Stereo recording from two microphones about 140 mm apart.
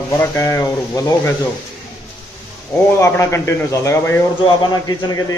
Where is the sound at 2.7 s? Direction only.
20° left (ahead or behind).